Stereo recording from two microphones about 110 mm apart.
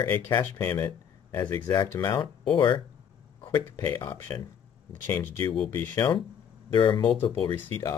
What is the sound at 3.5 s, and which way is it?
Speech, 35° left (ahead or behind).